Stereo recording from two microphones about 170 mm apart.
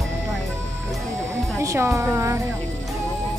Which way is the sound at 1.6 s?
20° right (ahead or behind).